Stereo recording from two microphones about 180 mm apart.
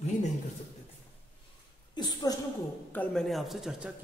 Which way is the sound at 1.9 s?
20° left (ahead or behind).